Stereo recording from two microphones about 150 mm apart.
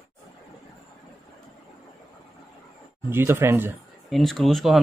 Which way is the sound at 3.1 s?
15° right (ahead or behind).